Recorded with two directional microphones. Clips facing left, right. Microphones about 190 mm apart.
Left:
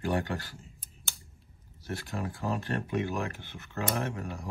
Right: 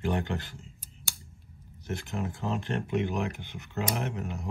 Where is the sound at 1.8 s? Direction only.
20° right (ahead or behind).